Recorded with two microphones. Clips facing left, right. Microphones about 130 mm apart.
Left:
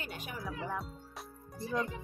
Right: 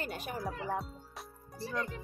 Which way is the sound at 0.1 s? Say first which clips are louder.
Right 3 dB; 40° right (ahead or behind).